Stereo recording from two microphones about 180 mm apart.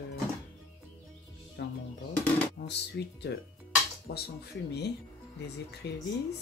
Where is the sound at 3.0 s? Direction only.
75° left (ahead or behind).